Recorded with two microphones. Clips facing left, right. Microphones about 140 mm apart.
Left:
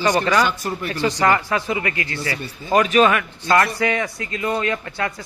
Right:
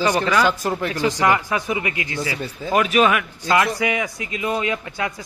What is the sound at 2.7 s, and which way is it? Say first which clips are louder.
Speech: left 2 dB; 5° right (ahead or behind).